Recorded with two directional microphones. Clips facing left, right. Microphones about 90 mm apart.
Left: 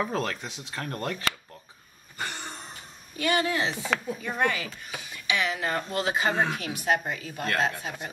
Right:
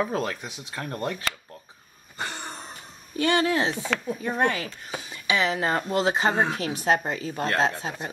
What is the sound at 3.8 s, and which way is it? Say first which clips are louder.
Speech: right 1 dB; centre (ahead or behind).